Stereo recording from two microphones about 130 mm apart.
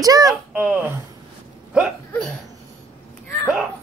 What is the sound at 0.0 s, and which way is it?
Speech, 25° right (ahead or behind).